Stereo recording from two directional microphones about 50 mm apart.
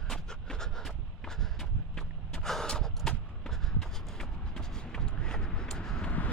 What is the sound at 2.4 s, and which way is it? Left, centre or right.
Snort, centre.